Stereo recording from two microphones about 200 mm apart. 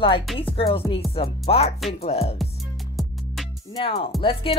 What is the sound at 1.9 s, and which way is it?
Music, 30° left (ahead or behind).